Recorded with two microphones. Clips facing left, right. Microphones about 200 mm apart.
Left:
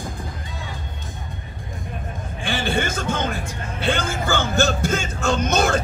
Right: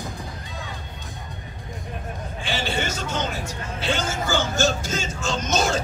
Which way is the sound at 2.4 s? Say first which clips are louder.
Left 4 dB; 55° left (ahead or behind).